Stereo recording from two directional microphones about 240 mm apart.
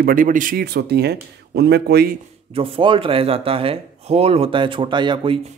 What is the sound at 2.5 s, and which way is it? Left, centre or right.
Speech, right.